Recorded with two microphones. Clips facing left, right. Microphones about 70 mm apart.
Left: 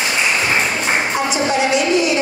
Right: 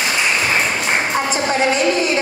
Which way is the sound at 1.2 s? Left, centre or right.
Right.